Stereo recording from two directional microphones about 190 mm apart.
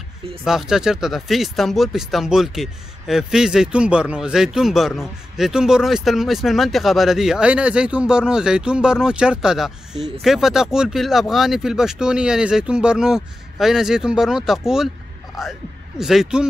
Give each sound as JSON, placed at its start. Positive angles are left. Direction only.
{"t": 0.4, "sound": "speech", "side_deg": 0}